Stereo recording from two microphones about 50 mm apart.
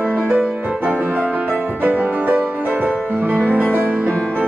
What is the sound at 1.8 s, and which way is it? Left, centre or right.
Music, right.